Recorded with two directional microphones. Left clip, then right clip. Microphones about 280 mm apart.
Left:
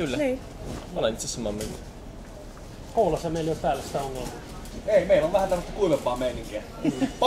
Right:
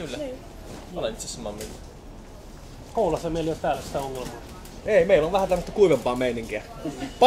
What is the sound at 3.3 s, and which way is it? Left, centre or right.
Speech, centre.